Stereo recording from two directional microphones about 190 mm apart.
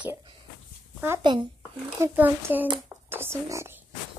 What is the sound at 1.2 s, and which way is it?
Speech, 25° right (ahead or behind).